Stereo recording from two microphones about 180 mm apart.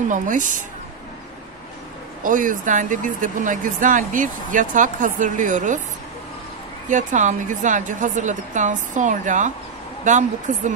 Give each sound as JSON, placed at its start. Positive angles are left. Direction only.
{"t": 0.1, "sound": "speech", "side_deg": -45}
{"t": 2.2, "sound": "speech", "side_deg": -45}
{"t": 6.9, "sound": "speech", "side_deg": -45}